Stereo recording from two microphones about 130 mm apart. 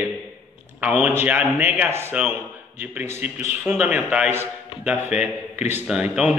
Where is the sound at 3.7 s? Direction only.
15° right (ahead or behind).